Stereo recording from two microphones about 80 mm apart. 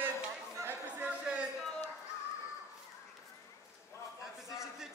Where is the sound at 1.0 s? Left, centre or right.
Centre.